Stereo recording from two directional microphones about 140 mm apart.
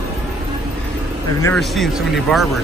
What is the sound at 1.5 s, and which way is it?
Speech, centre (ahead or behind).